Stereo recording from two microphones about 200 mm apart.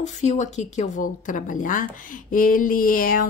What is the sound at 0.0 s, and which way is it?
A woman's voice, 35° left (ahead or behind).